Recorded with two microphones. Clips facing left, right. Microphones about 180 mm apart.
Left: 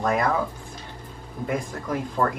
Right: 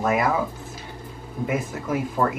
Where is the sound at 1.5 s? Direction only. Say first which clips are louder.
Right 1 dB; 5° right (ahead or behind).